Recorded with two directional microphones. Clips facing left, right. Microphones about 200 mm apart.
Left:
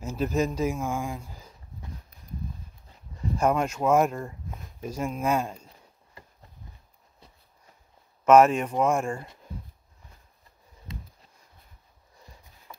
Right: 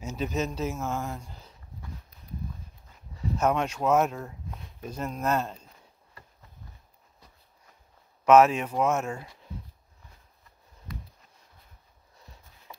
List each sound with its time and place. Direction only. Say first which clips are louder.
0.0 s speech: left 4 dB; 5° left (ahead or behind)
3.3 s speech: left 2 dB; 10° left (ahead or behind)
8.3 s speech: left 1 dB; 5° right (ahead or behind)
10.9 s a sound: even; 25° left (ahead or behind)